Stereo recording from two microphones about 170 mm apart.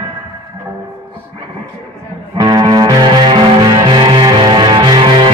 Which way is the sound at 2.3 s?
25° right (ahead or behind).